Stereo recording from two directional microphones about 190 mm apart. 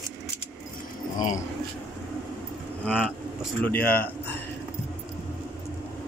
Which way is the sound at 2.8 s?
5° right (ahead or behind).